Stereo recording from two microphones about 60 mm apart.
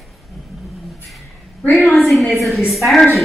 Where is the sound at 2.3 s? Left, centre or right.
Centre.